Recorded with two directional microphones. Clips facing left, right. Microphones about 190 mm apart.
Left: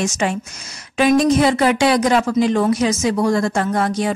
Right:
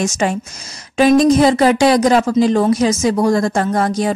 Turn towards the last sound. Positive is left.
turn(degrees=-40)  # may be behind; listen again after turning